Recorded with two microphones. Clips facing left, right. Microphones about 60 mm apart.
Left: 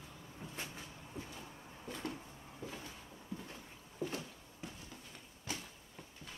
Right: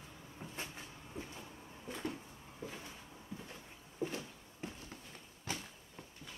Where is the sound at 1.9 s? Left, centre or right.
Centre.